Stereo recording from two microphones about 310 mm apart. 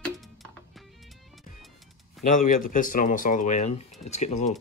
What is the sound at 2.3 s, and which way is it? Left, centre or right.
Speech, left.